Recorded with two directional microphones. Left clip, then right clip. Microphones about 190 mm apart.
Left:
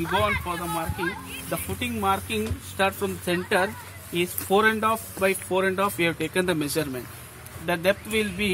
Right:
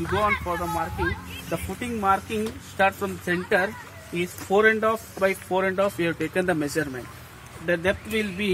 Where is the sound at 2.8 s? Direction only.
35° left (ahead or behind).